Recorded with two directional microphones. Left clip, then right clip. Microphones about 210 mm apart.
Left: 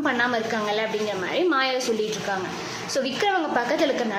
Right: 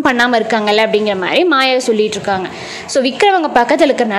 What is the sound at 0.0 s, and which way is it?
A woman's voice, 40° right (ahead or behind).